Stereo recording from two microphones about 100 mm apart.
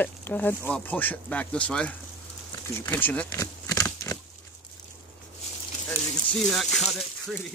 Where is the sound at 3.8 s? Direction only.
30° left (ahead or behind).